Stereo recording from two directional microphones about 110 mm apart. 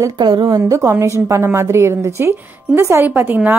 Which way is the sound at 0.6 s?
25° right (ahead or behind).